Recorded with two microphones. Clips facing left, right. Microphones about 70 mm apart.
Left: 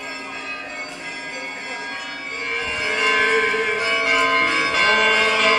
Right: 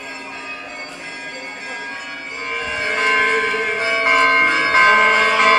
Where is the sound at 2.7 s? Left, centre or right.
Right.